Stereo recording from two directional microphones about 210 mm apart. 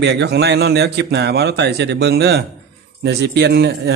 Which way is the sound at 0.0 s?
55° right (ahead or behind).